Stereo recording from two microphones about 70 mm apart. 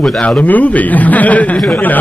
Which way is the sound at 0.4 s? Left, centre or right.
Left.